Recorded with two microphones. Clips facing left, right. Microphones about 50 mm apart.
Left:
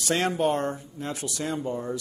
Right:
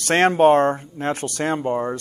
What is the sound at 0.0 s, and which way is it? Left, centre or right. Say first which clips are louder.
Speech: right 9 dB; right.